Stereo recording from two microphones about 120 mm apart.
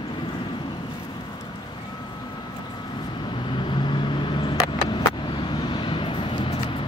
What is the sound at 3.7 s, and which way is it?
Vehicle, 45° left (ahead or behind).